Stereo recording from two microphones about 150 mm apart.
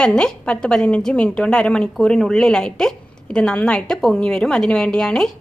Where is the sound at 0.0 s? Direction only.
5° left (ahead or behind).